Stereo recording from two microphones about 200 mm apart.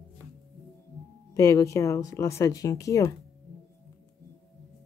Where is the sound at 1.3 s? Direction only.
15° left (ahead or behind).